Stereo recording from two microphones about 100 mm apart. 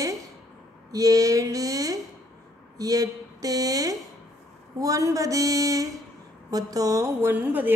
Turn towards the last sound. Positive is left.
turn(degrees=-20)  # may be behind; listen again after turning